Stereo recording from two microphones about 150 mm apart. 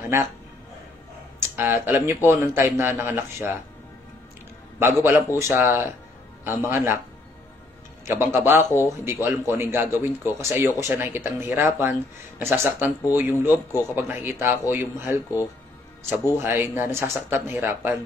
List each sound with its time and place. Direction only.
0.1 s speech: 20° right (ahead or behind)
1.6 s speech: 15° right (ahead or behind)
4.7 s speech: 15° right (ahead or behind)
8.0 s speech: 15° right (ahead or behind)